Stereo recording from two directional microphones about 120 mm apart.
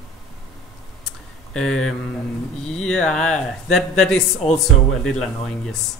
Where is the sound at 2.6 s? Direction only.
5° left (ahead or behind).